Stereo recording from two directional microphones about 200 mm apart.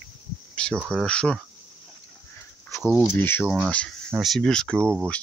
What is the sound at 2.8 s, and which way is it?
Speech, 5° right (ahead or behind).